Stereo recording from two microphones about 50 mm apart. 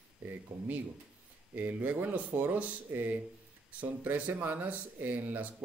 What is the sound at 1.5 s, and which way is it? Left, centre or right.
Speech, right.